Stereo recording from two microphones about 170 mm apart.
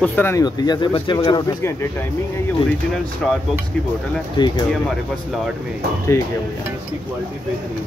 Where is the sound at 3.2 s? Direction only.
5° left (ahead or behind).